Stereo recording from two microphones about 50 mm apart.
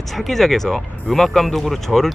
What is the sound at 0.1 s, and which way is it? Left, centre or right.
Speech, centre.